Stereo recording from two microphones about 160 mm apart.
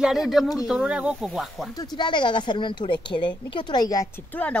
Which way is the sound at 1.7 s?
25° left (ahead or behind).